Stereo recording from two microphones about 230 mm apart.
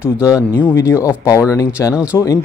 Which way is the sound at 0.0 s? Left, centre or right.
Centre.